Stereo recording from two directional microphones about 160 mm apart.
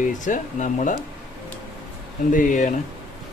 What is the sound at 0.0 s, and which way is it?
Speech, 50° left (ahead or behind).